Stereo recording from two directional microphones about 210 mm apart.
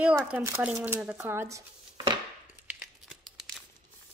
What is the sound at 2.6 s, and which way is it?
Tearing, centre (ahead or behind).